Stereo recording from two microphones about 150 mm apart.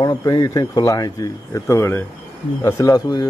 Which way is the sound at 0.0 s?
25° left (ahead or behind).